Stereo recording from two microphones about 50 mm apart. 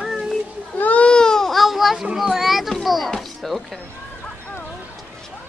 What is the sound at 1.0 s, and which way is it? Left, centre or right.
Baby cry, centre.